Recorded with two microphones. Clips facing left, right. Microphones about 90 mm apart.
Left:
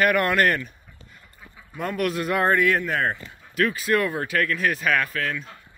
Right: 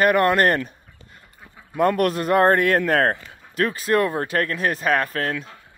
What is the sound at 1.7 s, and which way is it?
A man's voice, 50° right (ahead or behind).